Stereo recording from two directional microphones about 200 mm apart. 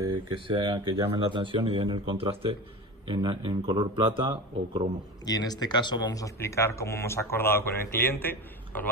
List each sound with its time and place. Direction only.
0.5 s speech: 25° right (ahead or behind)
5.2 s speech: 20° left (ahead or behind)